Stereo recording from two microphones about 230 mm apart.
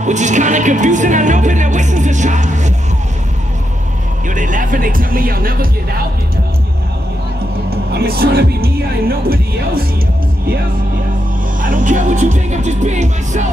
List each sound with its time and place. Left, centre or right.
0.0 s music: right
4.3 s speech: right
7.9 s speech: right
11.6 s music: right